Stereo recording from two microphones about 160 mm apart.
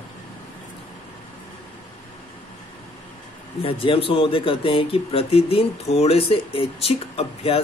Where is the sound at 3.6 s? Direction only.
35° left (ahead or behind).